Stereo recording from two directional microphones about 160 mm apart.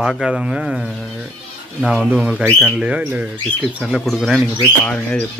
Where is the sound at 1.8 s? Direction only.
Centre (ahead or behind).